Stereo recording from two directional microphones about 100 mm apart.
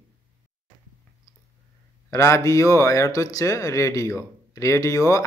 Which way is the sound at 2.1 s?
30° left (ahead or behind).